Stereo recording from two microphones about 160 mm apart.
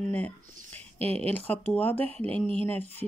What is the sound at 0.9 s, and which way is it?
Speech, 40° right (ahead or behind).